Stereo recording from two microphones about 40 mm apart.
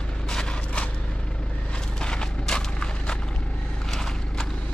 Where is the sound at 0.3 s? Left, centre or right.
Centre.